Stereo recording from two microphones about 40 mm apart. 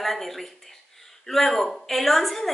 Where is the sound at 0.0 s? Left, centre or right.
Centre.